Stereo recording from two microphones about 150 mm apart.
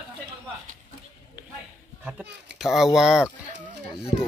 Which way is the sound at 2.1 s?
5° right (ahead or behind).